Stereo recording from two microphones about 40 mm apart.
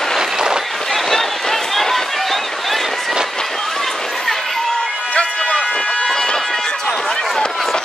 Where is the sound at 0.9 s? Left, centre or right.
Centre.